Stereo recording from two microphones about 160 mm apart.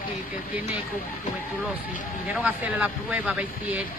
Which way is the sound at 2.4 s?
10° right (ahead or behind).